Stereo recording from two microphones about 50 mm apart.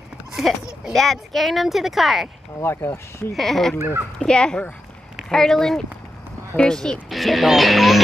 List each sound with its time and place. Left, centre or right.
0.9 s speech: centre
2.6 s speech: left
3.3 s speech: centre
4.2 s speech: centre
7.1 s speech: centre